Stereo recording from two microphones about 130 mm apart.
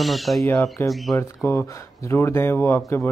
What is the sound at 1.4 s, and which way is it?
Speech, 15° left (ahead or behind).